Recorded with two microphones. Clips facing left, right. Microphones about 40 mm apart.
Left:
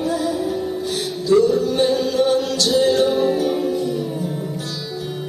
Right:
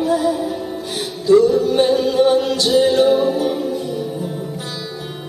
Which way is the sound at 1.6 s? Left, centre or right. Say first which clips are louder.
Right 3 dB; centre.